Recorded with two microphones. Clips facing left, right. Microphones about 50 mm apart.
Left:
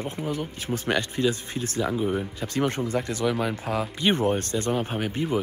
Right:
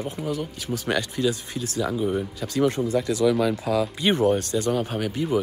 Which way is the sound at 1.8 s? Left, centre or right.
Centre.